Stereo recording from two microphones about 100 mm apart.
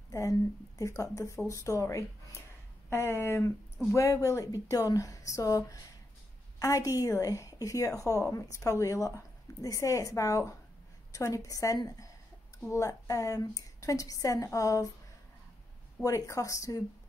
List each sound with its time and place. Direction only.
0.1 s a woman's voice: 35° left (ahead or behind)
16.0 s a woman's voice: 30° left (ahead or behind)